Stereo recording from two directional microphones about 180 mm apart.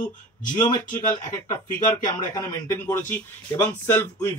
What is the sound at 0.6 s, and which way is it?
Speech, 25° left (ahead or behind).